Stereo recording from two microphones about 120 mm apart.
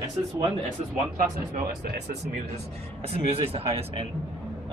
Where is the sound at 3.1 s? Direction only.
55° right (ahead or behind).